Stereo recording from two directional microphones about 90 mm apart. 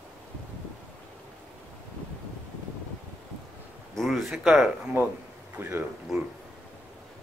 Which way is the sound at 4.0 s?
Centre (ahead or behind).